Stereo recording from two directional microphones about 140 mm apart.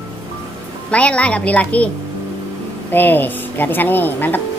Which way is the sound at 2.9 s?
15° left (ahead or behind).